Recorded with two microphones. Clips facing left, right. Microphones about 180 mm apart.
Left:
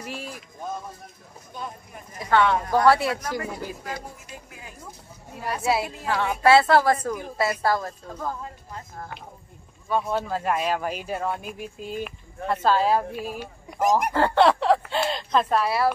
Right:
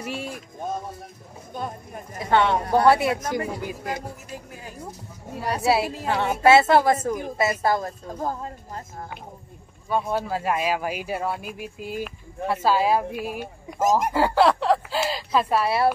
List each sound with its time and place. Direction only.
0.0 s music: 25° right (ahead or behind)
2.1 s speech: 25° right (ahead or behind)
5.6 s speech: 30° right (ahead or behind)
8.2 s speech: 40° right (ahead or behind)
9.8 s speech: 5° right (ahead or behind)
14.1 s speech: 5° right (ahead or behind)